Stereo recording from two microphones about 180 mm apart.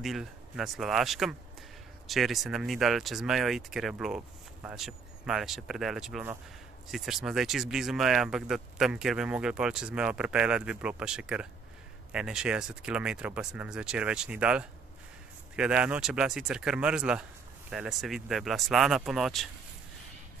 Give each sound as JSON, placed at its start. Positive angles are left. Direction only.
{"t": 0.0, "sound": "speech", "side_deg": 0}